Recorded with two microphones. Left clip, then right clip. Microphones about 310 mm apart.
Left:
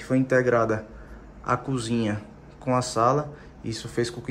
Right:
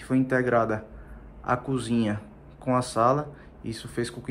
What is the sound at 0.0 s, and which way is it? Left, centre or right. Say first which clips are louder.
A man's voice: left 3 dB; centre.